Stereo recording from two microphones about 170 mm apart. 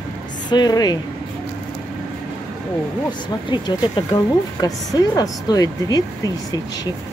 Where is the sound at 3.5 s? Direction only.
25° left (ahead or behind).